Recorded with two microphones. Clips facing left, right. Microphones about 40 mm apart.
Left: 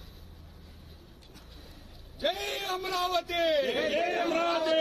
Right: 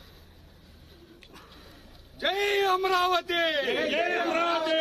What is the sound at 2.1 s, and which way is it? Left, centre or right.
A man's voice, right.